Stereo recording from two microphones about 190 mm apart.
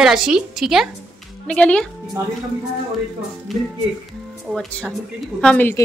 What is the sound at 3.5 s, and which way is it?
A woman's voice, centre (ahead or behind).